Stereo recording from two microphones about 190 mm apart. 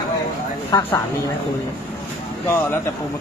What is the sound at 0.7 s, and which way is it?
Speech, 25° left (ahead or behind).